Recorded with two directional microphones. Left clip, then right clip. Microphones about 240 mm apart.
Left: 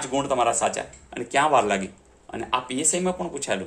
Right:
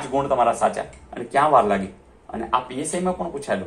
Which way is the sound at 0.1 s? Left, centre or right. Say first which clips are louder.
Right 3 dB; left.